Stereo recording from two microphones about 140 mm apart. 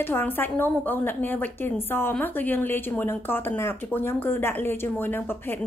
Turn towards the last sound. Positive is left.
turn(degrees=15)  # may be behind; listen again after turning